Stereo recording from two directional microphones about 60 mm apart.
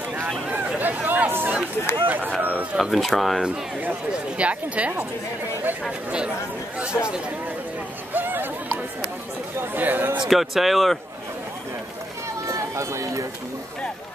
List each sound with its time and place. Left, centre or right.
0.7 s chatter: right
2.0 s speech: right
2.8 s speech: centre
4.4 s speech: right
8.1 s a sound: right
9.8 s speech: right
10.2 s speech: centre
12.4 s speech: right